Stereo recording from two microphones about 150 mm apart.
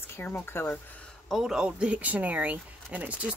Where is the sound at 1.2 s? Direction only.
Centre (ahead or behind).